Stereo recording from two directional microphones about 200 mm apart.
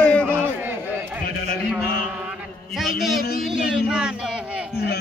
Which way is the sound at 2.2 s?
Centre (ahead or behind).